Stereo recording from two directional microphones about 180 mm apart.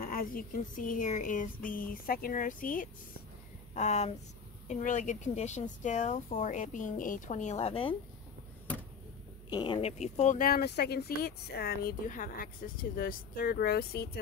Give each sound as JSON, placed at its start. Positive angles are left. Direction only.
{"t": 0.1, "sound": "speech", "side_deg": 55}
{"t": 9.5, "sound": "speech", "side_deg": 25}